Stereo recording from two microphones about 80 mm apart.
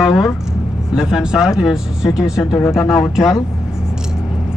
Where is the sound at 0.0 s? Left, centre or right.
Centre.